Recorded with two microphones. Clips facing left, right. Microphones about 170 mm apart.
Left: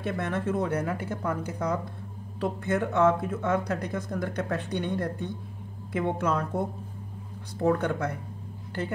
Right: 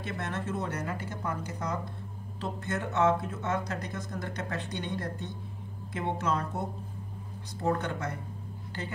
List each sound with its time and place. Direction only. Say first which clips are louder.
0.0 s speech: left 6 dB; 55° left (ahead or behind)
7.6 s speech: left 5 dB; 55° left (ahead or behind)